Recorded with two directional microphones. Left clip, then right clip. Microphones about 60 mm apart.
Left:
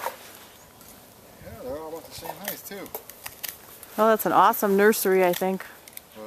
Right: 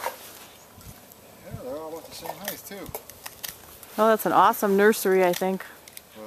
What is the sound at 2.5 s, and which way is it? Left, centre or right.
Stir, left.